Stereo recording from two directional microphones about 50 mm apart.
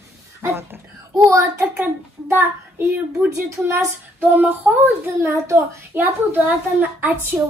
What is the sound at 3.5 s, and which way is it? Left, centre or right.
Speech, right.